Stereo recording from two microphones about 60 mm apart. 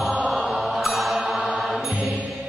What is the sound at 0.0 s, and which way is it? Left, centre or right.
Mantra, centre.